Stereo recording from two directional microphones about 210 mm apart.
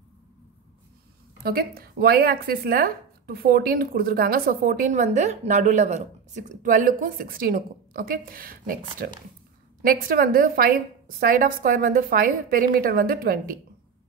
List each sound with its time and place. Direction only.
1.4 s speech: 45° right (ahead or behind)